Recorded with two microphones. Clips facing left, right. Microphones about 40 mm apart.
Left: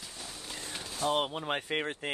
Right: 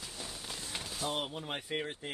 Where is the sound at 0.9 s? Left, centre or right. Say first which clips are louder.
Left 7 dB; left.